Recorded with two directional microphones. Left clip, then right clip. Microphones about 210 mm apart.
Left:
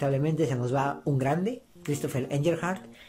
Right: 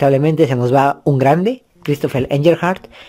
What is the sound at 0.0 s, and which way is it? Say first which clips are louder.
Speech: right 15 dB; 40° right (ahead or behind).